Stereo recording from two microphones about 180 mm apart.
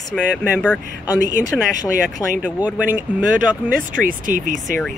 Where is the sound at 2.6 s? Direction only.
10° right (ahead or behind).